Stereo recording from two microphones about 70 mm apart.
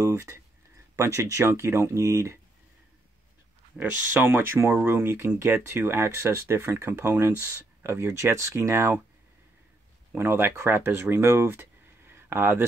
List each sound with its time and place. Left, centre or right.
0.0 s speech: right
3.8 s speech: centre
4.1 s speech: right
10.1 s speech: right
12.1 s a sound: right